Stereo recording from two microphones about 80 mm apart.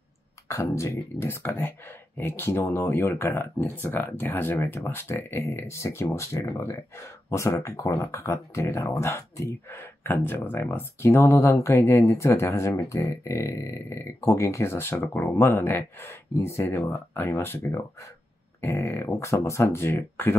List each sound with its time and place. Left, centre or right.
0.5 s speech: left